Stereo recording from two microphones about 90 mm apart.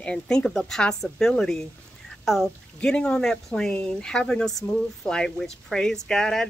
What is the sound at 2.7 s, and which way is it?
Speech, 10° left (ahead or behind).